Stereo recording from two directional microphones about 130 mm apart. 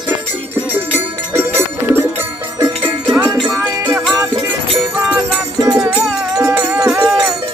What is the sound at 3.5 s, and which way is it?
Music, 15° right (ahead or behind).